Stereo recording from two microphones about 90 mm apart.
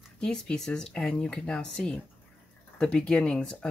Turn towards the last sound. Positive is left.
turn(degrees=10)  # may be behind; listen again after turning